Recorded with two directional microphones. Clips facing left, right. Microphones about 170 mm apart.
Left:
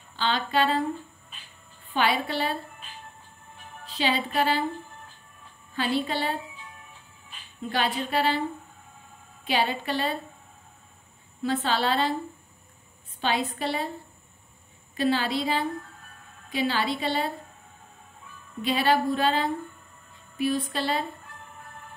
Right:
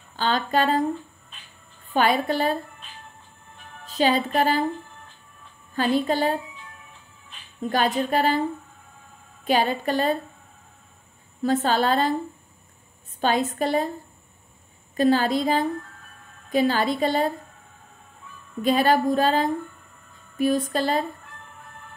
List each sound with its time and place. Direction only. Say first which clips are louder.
0.1 s speech: right 3 dB; 45° right (ahead or behind)
2.0 s a woman's voice: right 4 dB; 45° right (ahead or behind)
3.8 s a woman's voice: right 6 dB; 45° right (ahead or behind)
5.8 s a woman's voice: right 5 dB; 45° right (ahead or behind)
7.7 s a woman's voice: right 4 dB; 45° right (ahead or behind)
9.4 s a woman's voice: right 4 dB; 45° right (ahead or behind)
11.4 s a woman's voice: right 4 dB; 45° right (ahead or behind)
13.2 s a woman's voice: right 5 dB; 45° right (ahead or behind)
15.0 s a woman's voice: right 5 dB; 45° right (ahead or behind)
18.6 s a woman's voice: right 4 dB; 45° right (ahead or behind)